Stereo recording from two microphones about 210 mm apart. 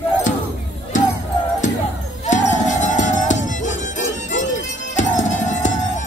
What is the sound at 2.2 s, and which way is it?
Music, 35° left (ahead or behind).